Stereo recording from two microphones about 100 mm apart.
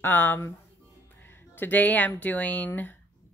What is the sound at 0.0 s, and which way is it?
Speech, 20° left (ahead or behind).